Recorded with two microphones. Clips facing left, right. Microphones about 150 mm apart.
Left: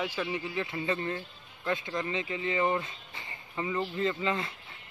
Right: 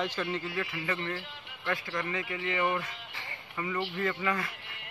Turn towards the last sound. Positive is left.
turn(degrees=25)  # may be behind; listen again after turning